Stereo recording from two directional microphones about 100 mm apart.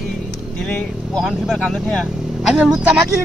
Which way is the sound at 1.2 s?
Centre (ahead or behind).